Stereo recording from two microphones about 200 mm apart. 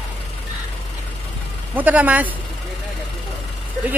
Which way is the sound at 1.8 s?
10° right (ahead or behind).